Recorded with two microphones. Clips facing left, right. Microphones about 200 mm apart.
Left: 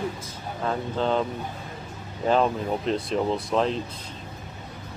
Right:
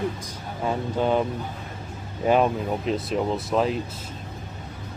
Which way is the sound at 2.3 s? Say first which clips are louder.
Right 2 dB; 10° right (ahead or behind).